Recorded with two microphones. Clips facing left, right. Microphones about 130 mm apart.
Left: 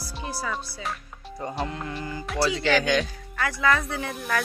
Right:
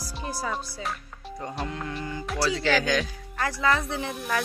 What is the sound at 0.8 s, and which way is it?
Speech, centre (ahead or behind).